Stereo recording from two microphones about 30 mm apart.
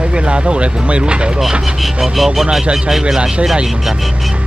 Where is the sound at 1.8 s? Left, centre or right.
Centre.